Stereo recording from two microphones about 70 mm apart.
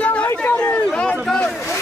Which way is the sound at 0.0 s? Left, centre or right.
Centre.